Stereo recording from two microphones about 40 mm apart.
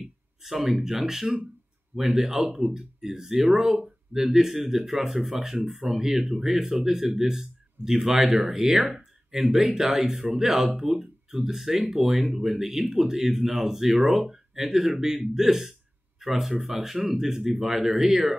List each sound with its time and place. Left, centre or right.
0.4 s speech: centre
16.8 s speech: centre